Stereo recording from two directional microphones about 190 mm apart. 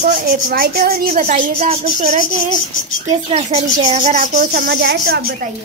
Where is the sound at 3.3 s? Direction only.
35° right (ahead or behind); by 5.2 s 55° right (ahead or behind).